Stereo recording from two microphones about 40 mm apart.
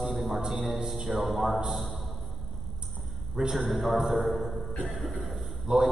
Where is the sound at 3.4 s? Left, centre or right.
Centre.